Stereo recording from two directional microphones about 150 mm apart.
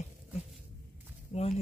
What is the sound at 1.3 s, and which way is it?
Speech, 45° left (ahead or behind).